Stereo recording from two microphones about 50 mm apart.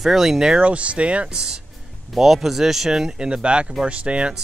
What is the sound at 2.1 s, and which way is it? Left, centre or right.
Speech, centre.